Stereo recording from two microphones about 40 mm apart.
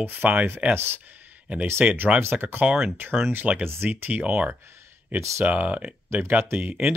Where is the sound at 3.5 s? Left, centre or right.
Right.